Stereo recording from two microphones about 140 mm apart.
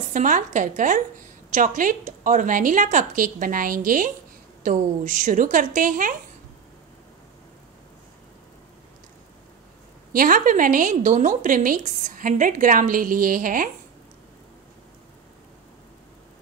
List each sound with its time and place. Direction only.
0.1 s a woman's voice: 65° right (ahead or behind)
10.1 s a woman's voice: 80° right